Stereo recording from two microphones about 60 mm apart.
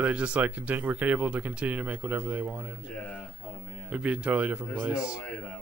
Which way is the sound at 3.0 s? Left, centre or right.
Centre.